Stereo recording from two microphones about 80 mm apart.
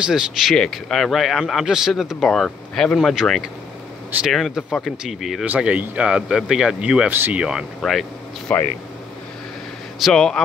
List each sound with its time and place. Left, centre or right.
0.0 s speech: centre
5.4 s speech: centre
7.8 s speech: centre
8.5 s speech: centre
10.1 s speech: centre